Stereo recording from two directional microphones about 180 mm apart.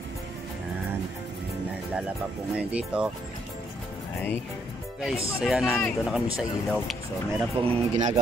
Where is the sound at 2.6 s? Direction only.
5° right (ahead or behind).